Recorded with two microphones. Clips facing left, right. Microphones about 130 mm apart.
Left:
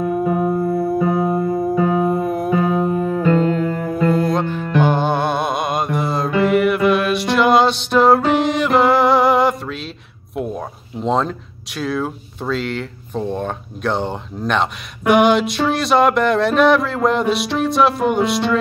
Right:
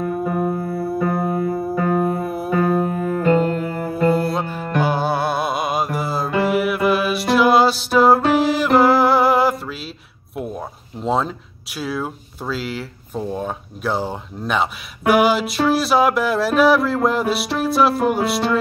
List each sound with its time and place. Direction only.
0.0 s music: 10° left (ahead or behind)
0.7 s music: 20° left (ahead or behind)
2.2 s music: 5° right (ahead or behind)
2.5 s music: 20° left (ahead or behind)
3.3 s music: 10° right (ahead or behind)
10.3 s speech: centre (ahead or behind)